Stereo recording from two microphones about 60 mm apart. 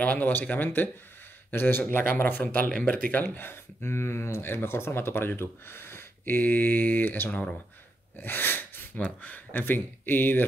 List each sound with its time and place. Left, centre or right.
0.0 s speech: left
3.3 s speech: left
8.2 s sneeze: left
8.9 s speech: left